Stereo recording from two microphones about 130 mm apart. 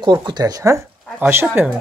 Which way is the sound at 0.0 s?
35° right (ahead or behind).